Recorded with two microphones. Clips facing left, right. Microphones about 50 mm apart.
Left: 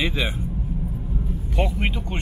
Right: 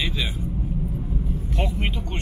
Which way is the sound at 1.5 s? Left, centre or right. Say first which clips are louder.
Left 4 dB; centre.